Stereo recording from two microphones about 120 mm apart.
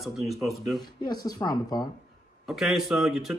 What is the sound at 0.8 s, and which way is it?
Speech, 35° left (ahead or behind).